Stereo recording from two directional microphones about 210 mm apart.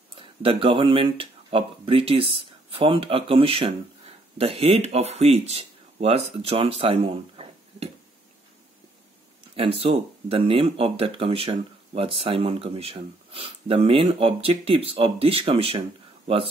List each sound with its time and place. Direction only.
0.1 s speech: 25° right (ahead or behind)
9.6 s speech: 25° right (ahead or behind)